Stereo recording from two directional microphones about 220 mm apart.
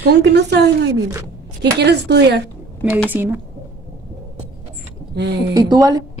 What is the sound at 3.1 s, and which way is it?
Speech, 10° right (ahead or behind).